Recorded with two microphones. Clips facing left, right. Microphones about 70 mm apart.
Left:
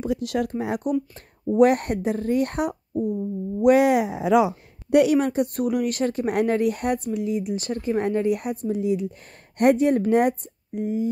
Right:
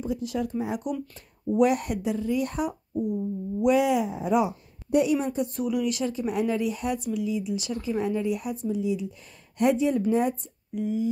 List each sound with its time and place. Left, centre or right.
0.0 s speech: left
1.6 s speech: left
4.9 s speech: left
10.7 s speech: left